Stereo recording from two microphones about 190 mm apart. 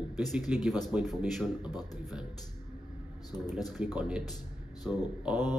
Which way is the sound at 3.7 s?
5° right (ahead or behind).